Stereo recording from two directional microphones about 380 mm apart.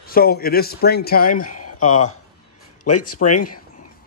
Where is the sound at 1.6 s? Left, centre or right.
Left.